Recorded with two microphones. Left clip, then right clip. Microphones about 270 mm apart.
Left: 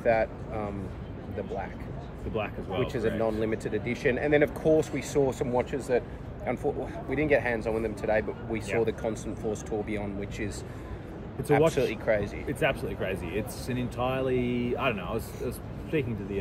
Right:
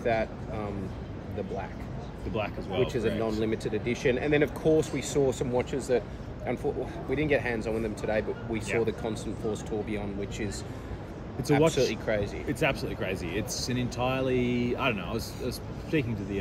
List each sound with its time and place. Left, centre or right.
0.0 s speech: centre
2.3 s speech: centre
3.2 s speech: centre
9.1 s speech: left
9.7 s speech: centre
11.5 s speech: centre
12.4 s speech: centre